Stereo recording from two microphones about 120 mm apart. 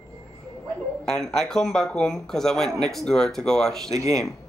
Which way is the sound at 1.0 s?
5° left (ahead or behind).